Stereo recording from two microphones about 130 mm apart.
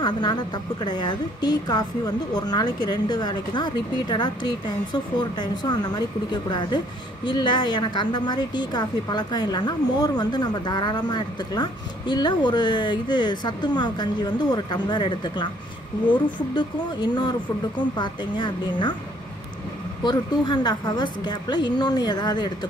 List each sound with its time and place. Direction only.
0.0 s speech: 35° left (ahead or behind)
16.5 s speech: 35° left (ahead or behind)
20.0 s speech: 35° left (ahead or behind)